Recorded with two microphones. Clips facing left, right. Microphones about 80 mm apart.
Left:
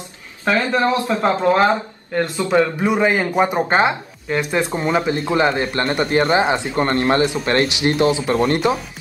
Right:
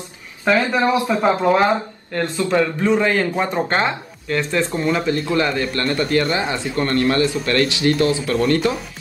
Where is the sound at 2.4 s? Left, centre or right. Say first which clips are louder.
Left 1 dB; centre.